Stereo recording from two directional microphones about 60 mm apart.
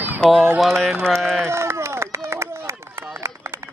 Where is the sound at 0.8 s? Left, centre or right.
Centre.